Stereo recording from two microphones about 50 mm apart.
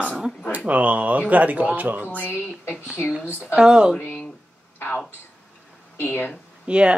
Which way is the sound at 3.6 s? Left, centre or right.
Centre.